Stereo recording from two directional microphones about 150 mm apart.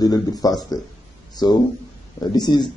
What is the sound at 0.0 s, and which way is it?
Speech, 25° left (ahead or behind).